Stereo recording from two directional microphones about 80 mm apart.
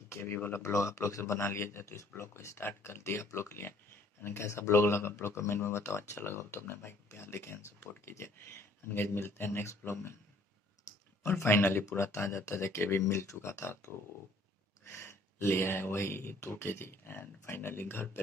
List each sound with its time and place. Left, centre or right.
0.1 s speech: left
11.2 s speech: left